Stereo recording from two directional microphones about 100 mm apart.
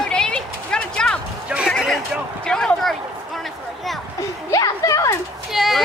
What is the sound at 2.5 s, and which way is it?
Speech, 5° left (ahead or behind).